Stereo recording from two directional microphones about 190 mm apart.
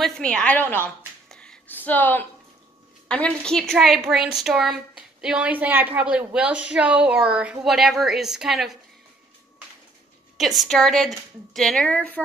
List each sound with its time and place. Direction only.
0.0 s a woman's voice: 5° left (ahead or behind)
1.3 s a sound: 5° left (ahead or behind)
3.1 s a woman's voice: 5° left (ahead or behind)
10.3 s a woman's voice: centre (ahead or behind)